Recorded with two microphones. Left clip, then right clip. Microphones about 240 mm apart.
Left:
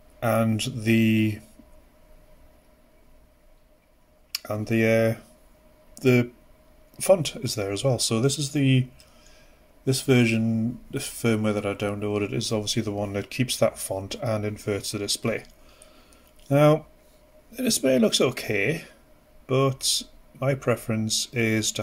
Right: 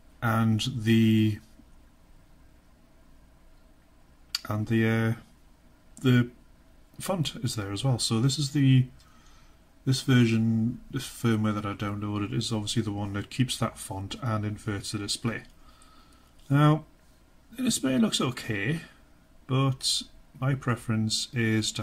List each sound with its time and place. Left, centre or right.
0.2 s speech: centre
4.3 s speech: centre
7.0 s speech: centre
9.8 s speech: centre
16.4 s speech: centre
19.7 s speech: right
20.3 s speech: centre